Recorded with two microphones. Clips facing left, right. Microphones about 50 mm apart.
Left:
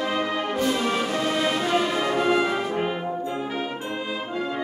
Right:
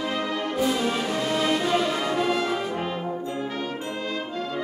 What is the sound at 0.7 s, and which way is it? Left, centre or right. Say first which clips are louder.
Music: left 1 dB; centre.